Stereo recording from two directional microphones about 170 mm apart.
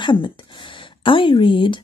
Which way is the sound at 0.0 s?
30° left (ahead or behind).